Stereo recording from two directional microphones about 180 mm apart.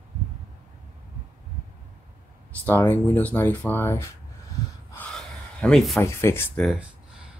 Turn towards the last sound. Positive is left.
turn(degrees=15)  # may be behind; listen again after turning